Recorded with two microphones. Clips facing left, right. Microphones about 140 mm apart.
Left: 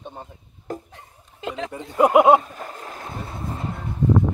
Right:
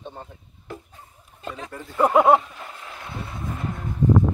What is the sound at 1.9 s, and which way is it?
Speech, 15° left (ahead or behind).